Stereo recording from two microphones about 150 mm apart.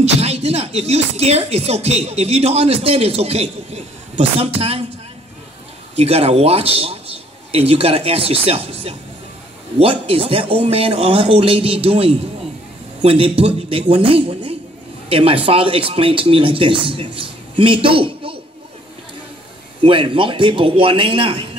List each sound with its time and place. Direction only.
0.0 s speech: 45° right (ahead or behind)
5.9 s speech: 40° right (ahead or behind)
19.8 s speech: 35° right (ahead or behind)